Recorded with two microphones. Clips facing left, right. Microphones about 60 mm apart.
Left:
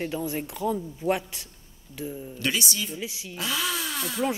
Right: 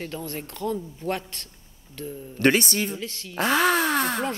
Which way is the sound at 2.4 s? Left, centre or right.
Right.